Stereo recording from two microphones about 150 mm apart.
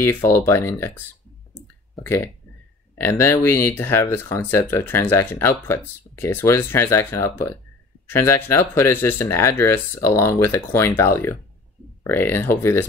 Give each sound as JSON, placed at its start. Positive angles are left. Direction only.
{"t": 0.0, "sound": "speech", "side_deg": 15}
{"t": 2.0, "sound": "speech", "side_deg": 15}